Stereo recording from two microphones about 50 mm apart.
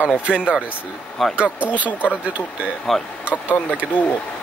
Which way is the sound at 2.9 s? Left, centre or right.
Centre.